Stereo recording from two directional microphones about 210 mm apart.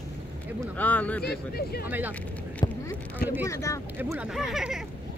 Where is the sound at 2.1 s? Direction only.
5° left (ahead or behind).